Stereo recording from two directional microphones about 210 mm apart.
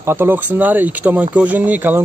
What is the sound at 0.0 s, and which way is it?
A man's voice, 10° right (ahead or behind).